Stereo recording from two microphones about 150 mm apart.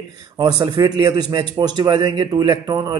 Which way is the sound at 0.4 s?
25° right (ahead or behind).